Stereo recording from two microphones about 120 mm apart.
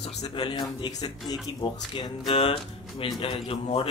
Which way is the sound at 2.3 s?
50° left (ahead or behind).